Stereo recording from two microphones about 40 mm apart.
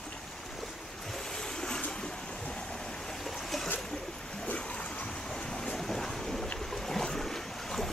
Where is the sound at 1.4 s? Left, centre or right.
Centre.